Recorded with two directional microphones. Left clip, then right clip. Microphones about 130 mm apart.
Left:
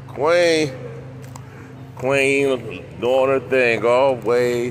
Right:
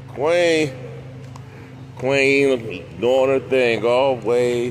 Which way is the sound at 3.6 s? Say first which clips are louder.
Left 2 dB; 25° right (ahead or behind).